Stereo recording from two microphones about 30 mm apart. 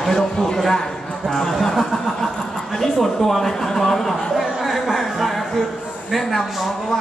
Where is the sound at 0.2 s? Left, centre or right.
Centre.